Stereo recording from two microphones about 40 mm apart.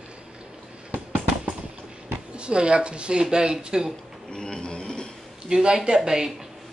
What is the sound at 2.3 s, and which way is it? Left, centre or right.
Speech, right.